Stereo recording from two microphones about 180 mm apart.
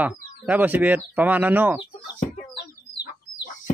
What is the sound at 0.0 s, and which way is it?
Speech, 10° right (ahead or behind).